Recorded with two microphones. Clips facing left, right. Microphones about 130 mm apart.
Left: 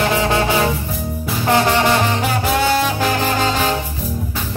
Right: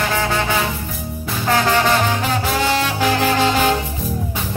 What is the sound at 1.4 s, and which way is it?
Music, 20° left (ahead or behind).